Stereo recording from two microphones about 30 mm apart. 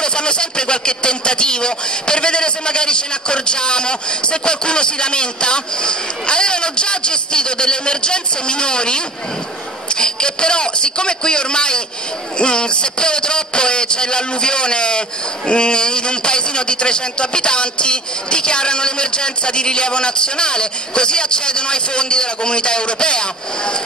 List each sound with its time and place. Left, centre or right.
0.0 s a man's voice: left